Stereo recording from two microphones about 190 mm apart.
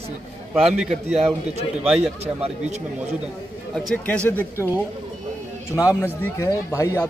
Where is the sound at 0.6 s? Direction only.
5° right (ahead or behind).